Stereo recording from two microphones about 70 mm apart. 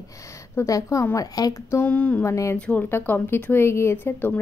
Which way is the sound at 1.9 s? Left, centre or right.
Left.